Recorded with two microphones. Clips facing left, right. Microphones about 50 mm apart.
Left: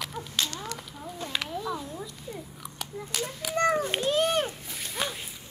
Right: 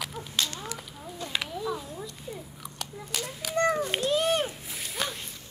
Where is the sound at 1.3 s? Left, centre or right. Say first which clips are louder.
Right 1 dB; centre.